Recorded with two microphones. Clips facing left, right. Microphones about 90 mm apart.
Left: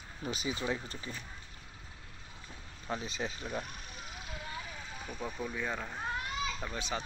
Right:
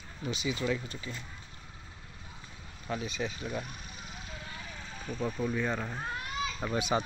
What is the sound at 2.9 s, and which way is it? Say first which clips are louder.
Speech: right 2 dB; 30° left (ahead or behind).